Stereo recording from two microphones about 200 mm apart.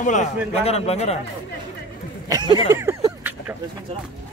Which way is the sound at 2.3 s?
20° right (ahead or behind).